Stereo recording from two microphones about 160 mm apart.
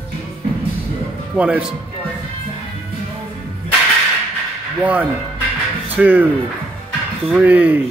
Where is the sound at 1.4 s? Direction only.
5° right (ahead or behind).